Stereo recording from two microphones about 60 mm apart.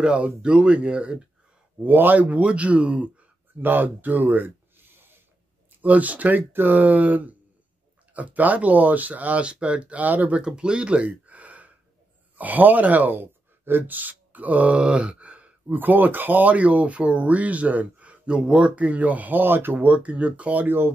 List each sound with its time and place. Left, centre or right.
0.0 s speech: centre
1.8 s speech: right
3.6 s speech: right
5.8 s speech: right
10.4 s speech: centre